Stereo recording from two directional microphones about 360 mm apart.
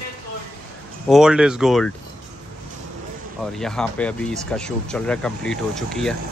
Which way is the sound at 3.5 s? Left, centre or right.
Centre.